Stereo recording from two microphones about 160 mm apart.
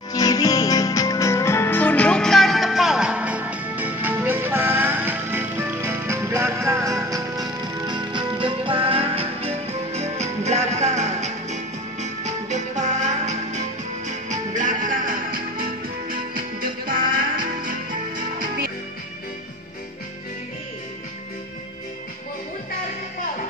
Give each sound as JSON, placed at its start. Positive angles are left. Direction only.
{"t": 0.1, "sound": "music", "side_deg": 25}